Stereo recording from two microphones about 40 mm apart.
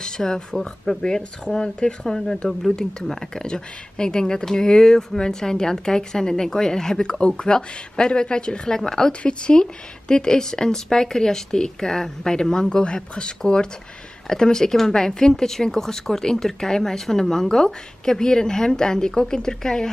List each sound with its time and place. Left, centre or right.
0.0 s speech: centre